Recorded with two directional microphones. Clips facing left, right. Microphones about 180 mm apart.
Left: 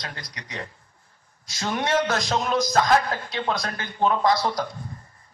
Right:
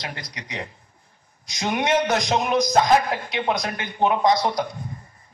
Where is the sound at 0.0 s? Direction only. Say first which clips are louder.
Right 3 dB; 20° right (ahead or behind).